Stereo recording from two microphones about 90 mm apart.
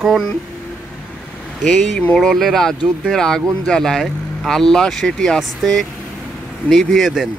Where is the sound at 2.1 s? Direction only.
Centre (ahead or behind).